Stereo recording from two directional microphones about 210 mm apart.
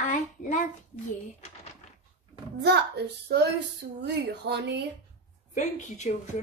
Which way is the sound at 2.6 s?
50° right (ahead or behind).